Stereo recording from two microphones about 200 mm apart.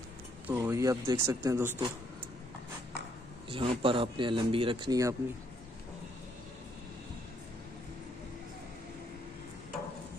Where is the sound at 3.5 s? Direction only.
25° right (ahead or behind).